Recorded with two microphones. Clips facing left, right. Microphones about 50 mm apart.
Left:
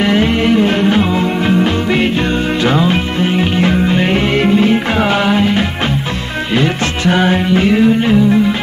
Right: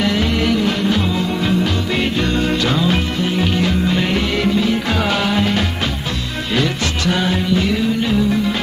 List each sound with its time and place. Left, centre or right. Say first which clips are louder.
0.0 s music: left 5 dB; left
5.0 s music: left 4 dB; left